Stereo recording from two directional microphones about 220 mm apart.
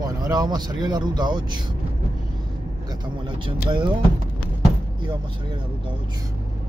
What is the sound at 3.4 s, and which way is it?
Speech, 20° right (ahead or behind).